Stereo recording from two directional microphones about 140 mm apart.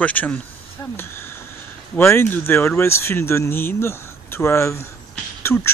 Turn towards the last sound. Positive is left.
turn(degrees=20)  # may be behind; listen again after turning